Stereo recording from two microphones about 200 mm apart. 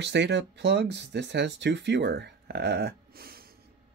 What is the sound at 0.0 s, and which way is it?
Speech, 60° right (ahead or behind).